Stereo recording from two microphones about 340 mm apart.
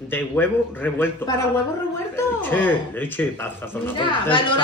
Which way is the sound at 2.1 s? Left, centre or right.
Centre.